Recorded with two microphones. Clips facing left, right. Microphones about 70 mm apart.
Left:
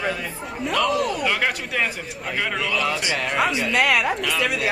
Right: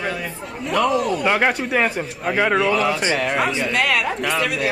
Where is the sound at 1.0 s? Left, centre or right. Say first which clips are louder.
Right 4 dB; right.